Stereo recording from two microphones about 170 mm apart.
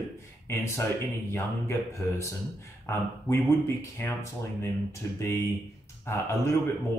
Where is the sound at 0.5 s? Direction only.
15° left (ahead or behind).